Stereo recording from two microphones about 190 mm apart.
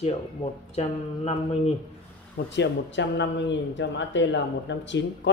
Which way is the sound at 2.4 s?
65° left (ahead or behind).